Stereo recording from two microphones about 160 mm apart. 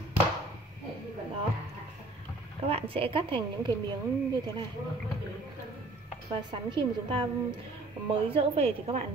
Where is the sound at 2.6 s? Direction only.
35° right (ahead or behind).